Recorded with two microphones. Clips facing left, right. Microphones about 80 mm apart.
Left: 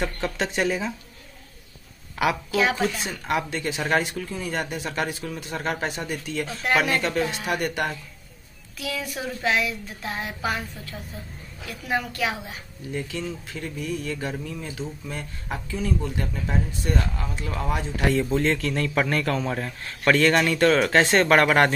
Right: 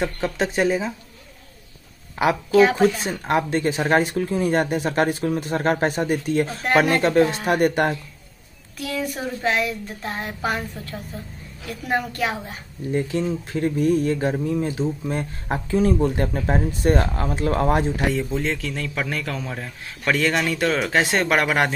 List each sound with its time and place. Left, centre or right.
0.2 s speech: centre
2.1 s speech: right
12.9 s speech: right
14.1 s speech: right
18.0 s speech: centre